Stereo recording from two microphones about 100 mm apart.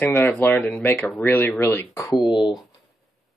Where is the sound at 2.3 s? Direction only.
50° left (ahead or behind).